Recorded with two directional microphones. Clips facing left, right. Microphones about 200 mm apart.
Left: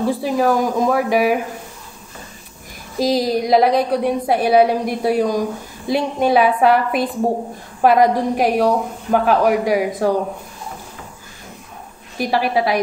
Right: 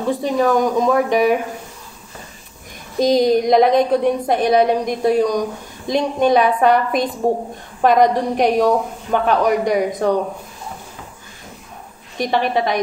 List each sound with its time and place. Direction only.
0.0 s speech: 5° left (ahead or behind)
3.0 s a woman's voice: 5° left (ahead or behind)
12.2 s a woman's voice: 5° left (ahead or behind)